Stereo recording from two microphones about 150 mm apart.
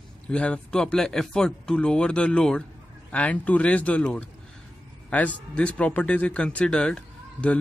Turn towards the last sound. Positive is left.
turn(degrees=5)  # may be behind; listen again after turning